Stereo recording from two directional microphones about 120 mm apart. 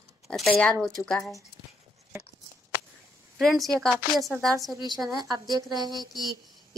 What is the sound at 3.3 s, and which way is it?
A woman's voice, centre (ahead or behind).